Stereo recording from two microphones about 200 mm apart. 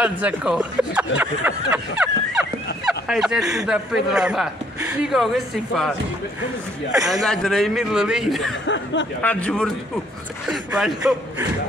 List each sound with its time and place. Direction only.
0.0 s speech: 5° right (ahead or behind)
7.1 s speech: centre (ahead or behind)
8.6 s speech: 65° left (ahead or behind)
9.2 s a man's voice: 5° left (ahead or behind)